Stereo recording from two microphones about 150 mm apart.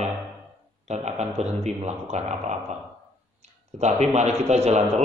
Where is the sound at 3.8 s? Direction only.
50° right (ahead or behind).